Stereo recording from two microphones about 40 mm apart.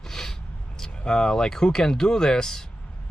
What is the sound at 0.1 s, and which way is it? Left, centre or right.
Speech, centre.